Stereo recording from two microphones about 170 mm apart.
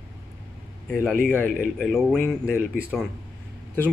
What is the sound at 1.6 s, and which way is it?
Speech, centre (ahead or behind).